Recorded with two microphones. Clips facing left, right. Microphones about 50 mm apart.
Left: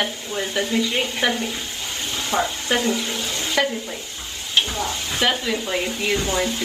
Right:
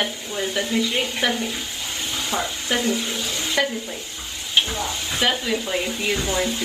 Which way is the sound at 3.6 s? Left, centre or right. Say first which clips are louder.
Left 2 dB; centre.